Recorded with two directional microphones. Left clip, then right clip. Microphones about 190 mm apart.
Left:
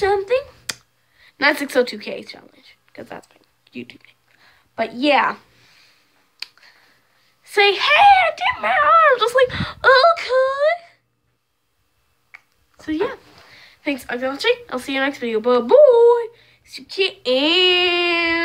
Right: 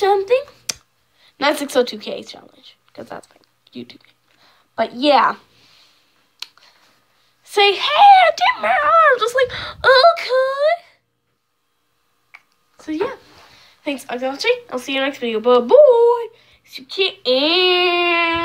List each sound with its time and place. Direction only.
0.0 s a sound: 10° right (ahead or behind)
0.7 s clicking: centre (ahead or behind)
1.2 s a woman's voice: 5° right (ahead or behind)
6.4 s a sound: 5° right (ahead or behind)
7.4 s speech: 5° right (ahead or behind)
8.3 s dog: 20° right (ahead or behind)
8.8 s speech: 5° left (ahead or behind)
12.3 s speech: 5° left (ahead or behind)
15.8 s a sound: 10° right (ahead or behind)
16.9 s speech: 5° left (ahead or behind)